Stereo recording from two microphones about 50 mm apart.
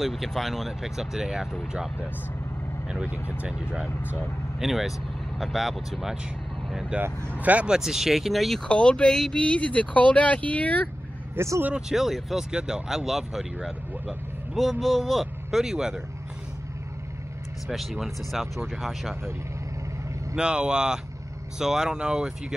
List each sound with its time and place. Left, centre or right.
0.0 s speech: centre
3.3 s speech: centre
4.6 s speech: centre
6.9 s speech: right
7.6 s speech: centre
8.6 s speech: left
9.1 s speech: centre
9.4 s speech: left
11.3 s speech: right
11.9 s speech: centre
12.4 s speech: centre
15.5 s speech: centre
17.6 s speech: centre
20.3 s speech: centre